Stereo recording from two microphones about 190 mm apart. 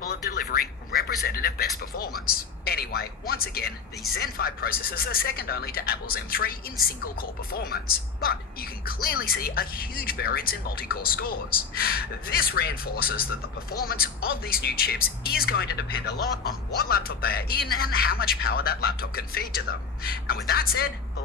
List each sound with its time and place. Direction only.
0.0 s speech: 55° left (ahead or behind)